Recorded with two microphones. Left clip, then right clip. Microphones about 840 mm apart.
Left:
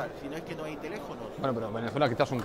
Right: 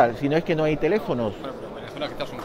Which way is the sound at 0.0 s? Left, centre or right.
Right.